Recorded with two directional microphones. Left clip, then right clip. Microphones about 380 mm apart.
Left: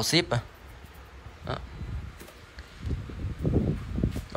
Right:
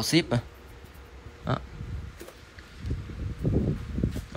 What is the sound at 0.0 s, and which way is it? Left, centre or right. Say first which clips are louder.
Speech: even; centre.